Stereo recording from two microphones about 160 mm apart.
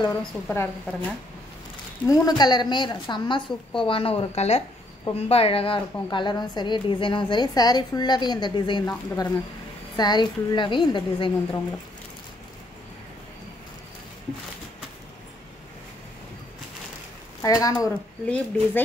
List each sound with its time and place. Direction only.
0.2 s a woman's voice: 5° left (ahead or behind)
2.0 s a woman's voice: 25° left (ahead or behind)
17.4 s a woman's voice: 20° left (ahead or behind)
18.2 s speech: 10° left (ahead or behind)